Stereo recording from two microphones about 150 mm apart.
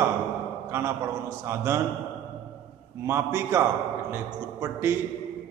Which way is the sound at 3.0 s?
15° right (ahead or behind).